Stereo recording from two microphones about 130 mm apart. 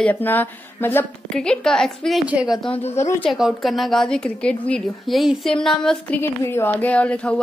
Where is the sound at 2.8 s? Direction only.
55° left (ahead or behind).